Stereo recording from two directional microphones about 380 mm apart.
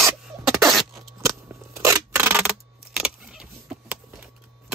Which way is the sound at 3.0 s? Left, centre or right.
Centre.